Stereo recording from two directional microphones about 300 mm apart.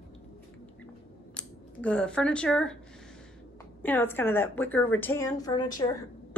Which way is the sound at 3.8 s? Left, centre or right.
Centre.